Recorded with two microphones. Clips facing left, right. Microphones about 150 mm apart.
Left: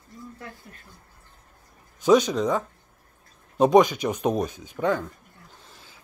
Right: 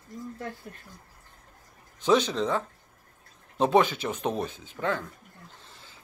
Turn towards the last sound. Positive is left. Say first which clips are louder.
# left 1 dB
turn(degrees=15)  # may be behind; listen again after turning